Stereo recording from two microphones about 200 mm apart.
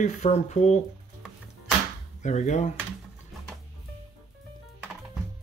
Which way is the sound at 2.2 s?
35° left (ahead or behind).